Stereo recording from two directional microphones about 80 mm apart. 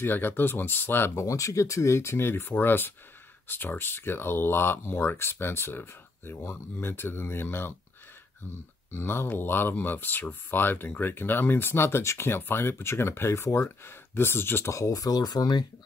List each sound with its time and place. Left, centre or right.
0.0 s speech: left
1.2 s speech: left